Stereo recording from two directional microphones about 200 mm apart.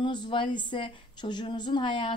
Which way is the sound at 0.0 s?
25° left (ahead or behind).